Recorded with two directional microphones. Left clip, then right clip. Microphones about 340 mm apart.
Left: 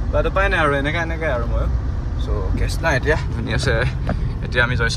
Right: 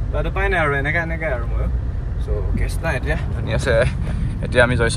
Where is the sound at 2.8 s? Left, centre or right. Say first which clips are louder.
Left 5 dB; left.